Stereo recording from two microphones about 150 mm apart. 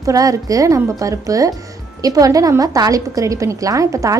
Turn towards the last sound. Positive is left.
turn(degrees=-20)  # may be behind; listen again after turning